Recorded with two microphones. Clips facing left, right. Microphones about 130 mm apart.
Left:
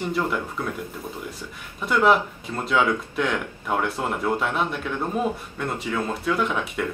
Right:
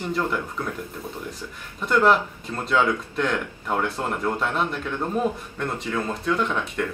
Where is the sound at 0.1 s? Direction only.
5° left (ahead or behind).